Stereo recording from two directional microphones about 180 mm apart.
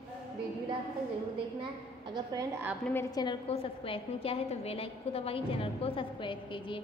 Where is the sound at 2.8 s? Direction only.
15° left (ahead or behind); by 6.8 s 30° left (ahead or behind).